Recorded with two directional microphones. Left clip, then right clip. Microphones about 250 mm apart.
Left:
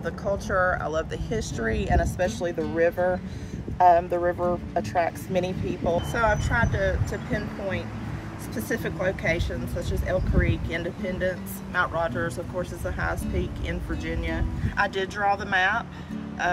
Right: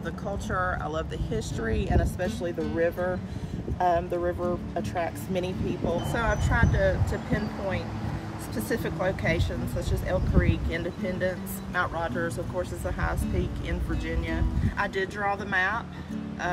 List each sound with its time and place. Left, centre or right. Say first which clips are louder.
0.0 s speech: left 6 dB; centre
6.1 s speech: left 3 dB; centre